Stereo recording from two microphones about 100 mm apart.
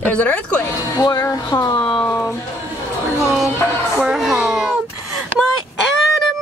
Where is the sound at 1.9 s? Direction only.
10° left (ahead or behind).